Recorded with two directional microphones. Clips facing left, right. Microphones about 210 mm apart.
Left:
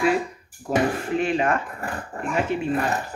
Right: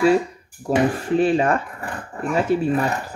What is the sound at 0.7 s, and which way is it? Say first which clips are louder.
Speech: right 3 dB; 35° right (ahead or behind).